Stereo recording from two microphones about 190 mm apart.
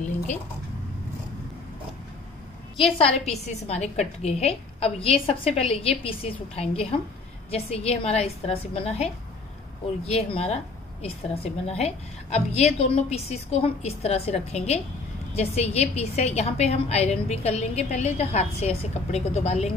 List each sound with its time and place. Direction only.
2.8 s a woman's voice: 30° left (ahead or behind)